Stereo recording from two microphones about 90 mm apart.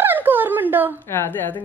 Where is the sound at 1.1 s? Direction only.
25° left (ahead or behind).